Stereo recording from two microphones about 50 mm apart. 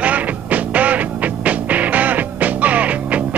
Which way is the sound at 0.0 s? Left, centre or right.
Right.